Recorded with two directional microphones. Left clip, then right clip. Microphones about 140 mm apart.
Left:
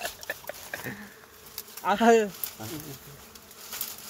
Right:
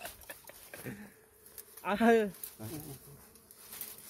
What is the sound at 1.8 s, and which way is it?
Bee, 60° right (ahead or behind).